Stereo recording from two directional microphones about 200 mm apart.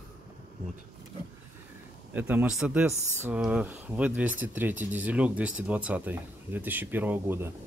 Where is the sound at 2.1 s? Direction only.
5° right (ahead or behind).